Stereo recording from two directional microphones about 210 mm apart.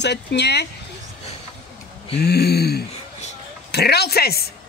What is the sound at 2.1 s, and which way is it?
Speech, 50° left (ahead or behind).